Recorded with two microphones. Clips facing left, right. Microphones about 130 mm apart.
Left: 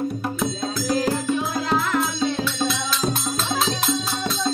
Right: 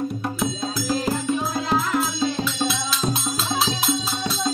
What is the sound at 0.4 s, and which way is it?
Music, 5° right (ahead or behind).